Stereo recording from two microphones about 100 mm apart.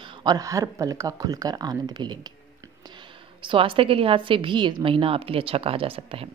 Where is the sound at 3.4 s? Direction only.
55° right (ahead or behind).